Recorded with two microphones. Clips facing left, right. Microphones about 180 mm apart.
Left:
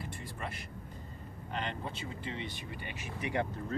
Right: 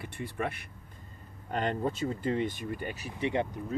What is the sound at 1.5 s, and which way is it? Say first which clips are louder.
Speech: right 8 dB; 45° right (ahead or behind).